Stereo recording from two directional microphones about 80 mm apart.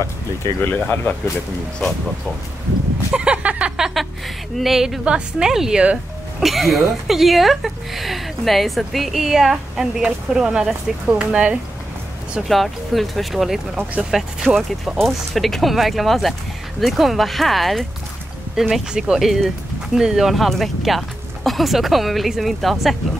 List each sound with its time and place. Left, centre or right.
0.6 s speech: left
3.1 s a sound: centre
4.6 s a woman's voice: centre
12.4 s a woman's voice: centre